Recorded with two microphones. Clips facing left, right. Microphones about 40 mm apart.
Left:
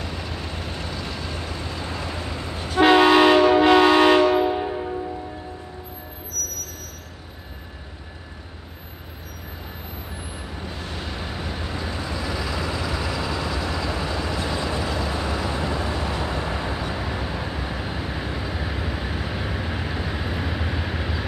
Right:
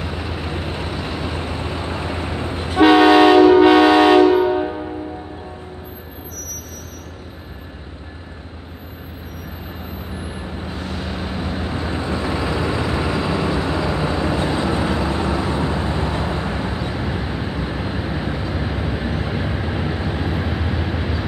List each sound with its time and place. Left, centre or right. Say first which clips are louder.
0.0 s vehicle: right 5 dB; right
2.8 s train: right 4 dB; centre
6.4 s vehicle: left 2 dB; right
10.8 s vehicle: right 6 dB; centre